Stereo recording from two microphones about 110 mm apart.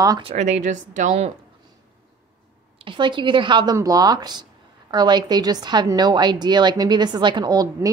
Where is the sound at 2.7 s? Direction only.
50° right (ahead or behind).